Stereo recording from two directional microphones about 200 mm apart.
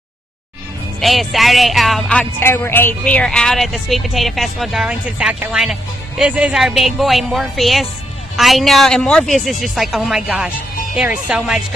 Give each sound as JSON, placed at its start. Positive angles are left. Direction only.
{"t": 1.0, "sound": "speech", "side_deg": 0}